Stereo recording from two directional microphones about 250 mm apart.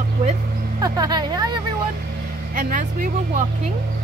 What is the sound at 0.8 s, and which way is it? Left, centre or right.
Speech, centre.